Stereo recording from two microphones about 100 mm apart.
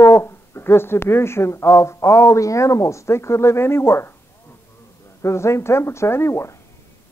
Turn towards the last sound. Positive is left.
turn(degrees=25)  # may be behind; listen again after turning